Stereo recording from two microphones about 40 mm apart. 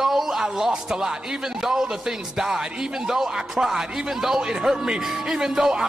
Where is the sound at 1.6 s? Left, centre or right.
Centre.